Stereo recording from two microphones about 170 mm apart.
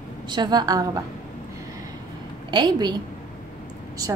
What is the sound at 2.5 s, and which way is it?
Speech, 25° right (ahead or behind).